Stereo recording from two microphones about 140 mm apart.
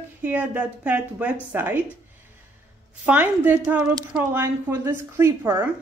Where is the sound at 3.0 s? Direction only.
10° right (ahead or behind).